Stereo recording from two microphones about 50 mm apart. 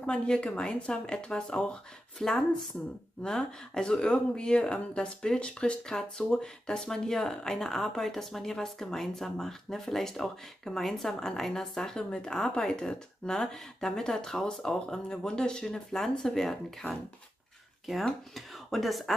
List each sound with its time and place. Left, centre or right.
0.0 s speech: centre
18.3 s speech: centre